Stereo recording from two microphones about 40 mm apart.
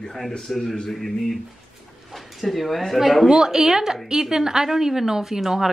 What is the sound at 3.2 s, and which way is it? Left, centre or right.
A woman's voice, centre.